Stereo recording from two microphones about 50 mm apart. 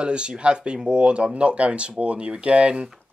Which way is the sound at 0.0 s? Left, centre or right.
Centre.